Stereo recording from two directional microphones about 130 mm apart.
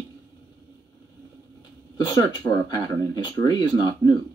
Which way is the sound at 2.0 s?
30° left (ahead or behind).